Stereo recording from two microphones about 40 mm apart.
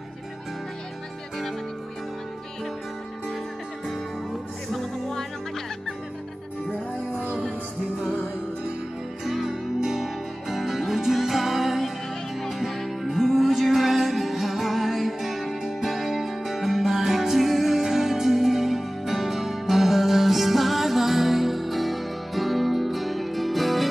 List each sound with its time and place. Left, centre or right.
9.2 s music: centre